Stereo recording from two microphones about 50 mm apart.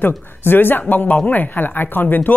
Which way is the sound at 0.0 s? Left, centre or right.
Left.